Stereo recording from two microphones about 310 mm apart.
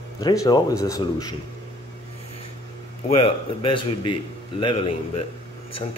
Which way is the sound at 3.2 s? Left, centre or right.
Centre.